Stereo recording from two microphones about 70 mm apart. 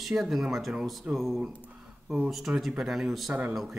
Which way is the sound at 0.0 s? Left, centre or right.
Centre.